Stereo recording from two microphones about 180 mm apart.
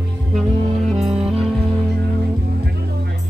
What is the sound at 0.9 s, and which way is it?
Music, centre (ahead or behind).